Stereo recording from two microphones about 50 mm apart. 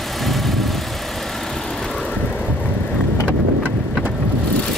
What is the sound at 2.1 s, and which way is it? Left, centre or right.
Vehicle, left.